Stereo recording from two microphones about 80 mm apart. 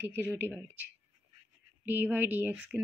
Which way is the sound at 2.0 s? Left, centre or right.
Right.